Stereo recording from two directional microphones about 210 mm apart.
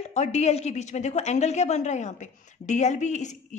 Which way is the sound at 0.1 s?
35° left (ahead or behind).